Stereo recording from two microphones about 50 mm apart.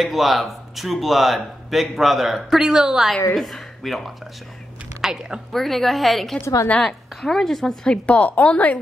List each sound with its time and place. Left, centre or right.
0.0 s a woman's voice: centre
3.3 s speech: centre
5.0 s a woman's voice: centre
5.5 s a woman's voice: centre
7.9 s a woman's voice: left